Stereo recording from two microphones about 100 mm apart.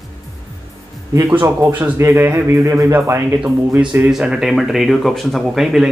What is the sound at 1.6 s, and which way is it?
A man's voice, 20° right (ahead or behind).